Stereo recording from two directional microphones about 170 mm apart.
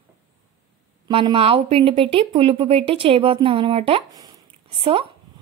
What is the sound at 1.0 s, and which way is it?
A woman's voice, 30° right (ahead or behind).